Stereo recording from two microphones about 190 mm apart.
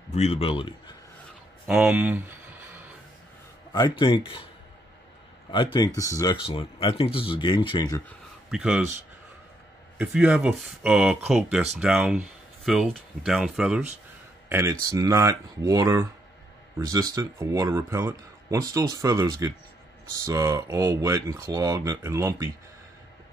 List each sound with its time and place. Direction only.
0.1 s speech: 35° left (ahead or behind)
1.7 s speech: 5° right (ahead or behind)
4.0 s speech: 25° left (ahead or behind)
5.5 s speech: 25° left (ahead or behind)
8.5 s speech: 5° right (ahead or behind)
9.9 s speech: 5° right (ahead or behind)
14.5 s speech: 15° right (ahead or behind)